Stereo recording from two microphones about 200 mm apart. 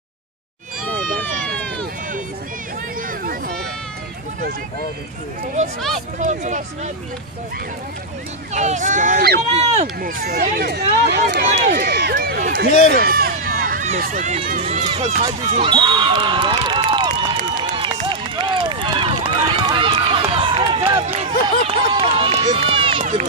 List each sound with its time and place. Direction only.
6.1 s speech: 35° right (ahead or behind)
8.5 s speech: 35° right (ahead or behind)
15.6 s speech: 25° right (ahead or behind)
17.6 s run: 25° right (ahead or behind)